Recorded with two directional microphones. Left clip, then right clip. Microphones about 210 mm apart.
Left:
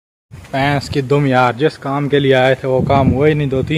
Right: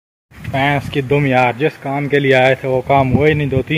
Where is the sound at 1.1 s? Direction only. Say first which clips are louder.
Left 1 dB; 10° left (ahead or behind).